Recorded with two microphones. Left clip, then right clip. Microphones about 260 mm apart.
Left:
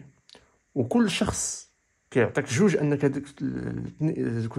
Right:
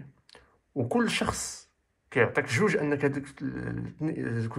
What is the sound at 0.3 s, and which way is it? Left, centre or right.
Speech, left.